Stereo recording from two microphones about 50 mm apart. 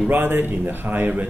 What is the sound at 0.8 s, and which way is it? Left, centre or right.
Speech, right.